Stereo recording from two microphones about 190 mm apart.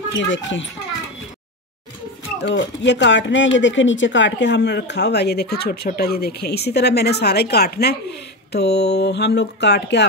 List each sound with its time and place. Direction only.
0.3 s speech: 75° left (ahead or behind)
2.4 s speech: 65° left (ahead or behind)